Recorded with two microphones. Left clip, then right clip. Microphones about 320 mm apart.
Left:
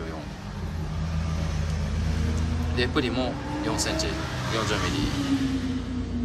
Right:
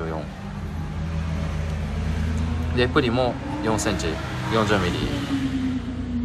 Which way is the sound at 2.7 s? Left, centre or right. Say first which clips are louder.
Right 5 dB; centre.